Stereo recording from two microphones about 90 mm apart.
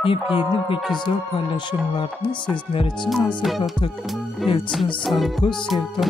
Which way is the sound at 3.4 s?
Centre (ahead or behind).